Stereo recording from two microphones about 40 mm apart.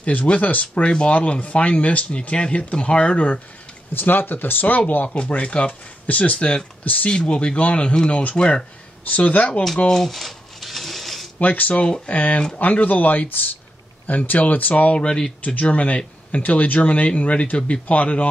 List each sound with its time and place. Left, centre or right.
0.0 s speech: left
3.9 s speech: left
5.4 s speech: left
7.1 s speech: left
8.4 s speech: left
9.0 s speech: left
9.8 s a sound: centre
11.3 s speech: left
11.7 s speech: left
15.0 s speech: left
15.4 s speech: left